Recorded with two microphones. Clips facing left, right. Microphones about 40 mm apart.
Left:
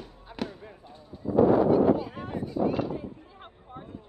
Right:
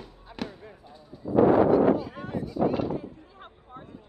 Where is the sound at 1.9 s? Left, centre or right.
Centre.